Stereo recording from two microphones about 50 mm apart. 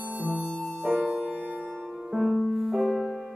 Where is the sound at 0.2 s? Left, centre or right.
Right.